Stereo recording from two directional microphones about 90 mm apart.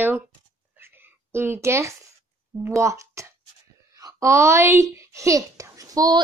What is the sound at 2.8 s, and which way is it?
A child's voice, 35° right (ahead or behind).